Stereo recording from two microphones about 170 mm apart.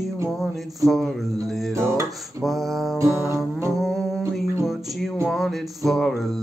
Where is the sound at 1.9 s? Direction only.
15° right (ahead or behind).